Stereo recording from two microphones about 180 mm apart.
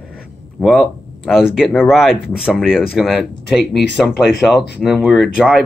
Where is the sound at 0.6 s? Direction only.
Centre (ahead or behind).